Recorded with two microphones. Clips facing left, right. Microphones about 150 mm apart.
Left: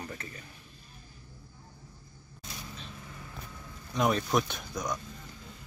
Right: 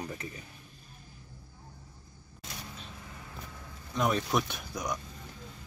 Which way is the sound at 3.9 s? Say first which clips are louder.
Left 2 dB; centre (ahead or behind).